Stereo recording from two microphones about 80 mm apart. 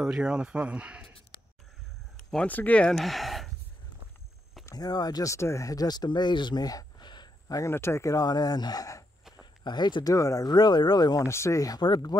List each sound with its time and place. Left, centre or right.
0.0 s speech: centre
2.4 s speech: centre
3.0 s a sound: centre
4.6 s speech: left
7.5 s speech: left
10.1 s speech: left
11.2 s speech: left
11.8 s speech: left